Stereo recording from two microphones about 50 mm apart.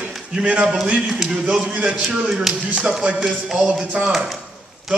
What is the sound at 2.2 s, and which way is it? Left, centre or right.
A man's voice, centre.